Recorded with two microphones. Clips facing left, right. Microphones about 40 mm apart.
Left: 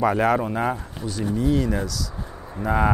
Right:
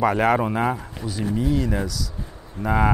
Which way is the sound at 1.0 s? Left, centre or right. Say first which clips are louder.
Left 1 dB; right.